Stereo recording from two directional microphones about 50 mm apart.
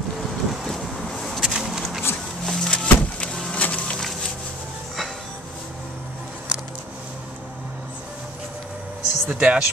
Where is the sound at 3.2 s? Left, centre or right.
Centre.